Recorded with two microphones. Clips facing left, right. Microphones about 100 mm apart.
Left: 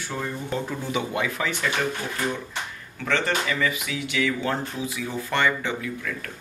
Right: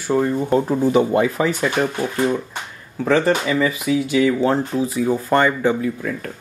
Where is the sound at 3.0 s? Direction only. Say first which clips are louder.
Right 8 dB; 35° right (ahead or behind).